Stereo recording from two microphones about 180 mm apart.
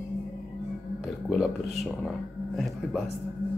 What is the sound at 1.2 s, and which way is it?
Speech, centre (ahead or behind).